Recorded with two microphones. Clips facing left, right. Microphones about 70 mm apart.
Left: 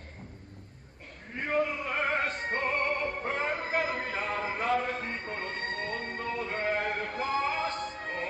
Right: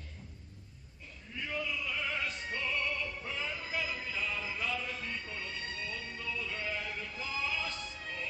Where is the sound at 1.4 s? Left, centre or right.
Left.